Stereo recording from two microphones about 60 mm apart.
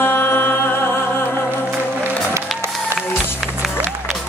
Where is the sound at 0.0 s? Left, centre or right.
Left.